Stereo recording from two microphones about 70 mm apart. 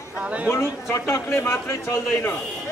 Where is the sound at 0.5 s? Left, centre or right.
Left.